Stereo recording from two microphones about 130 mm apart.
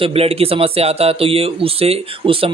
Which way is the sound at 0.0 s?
50° right (ahead or behind).